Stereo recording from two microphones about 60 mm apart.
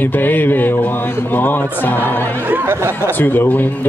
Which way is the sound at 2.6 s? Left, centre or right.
Right.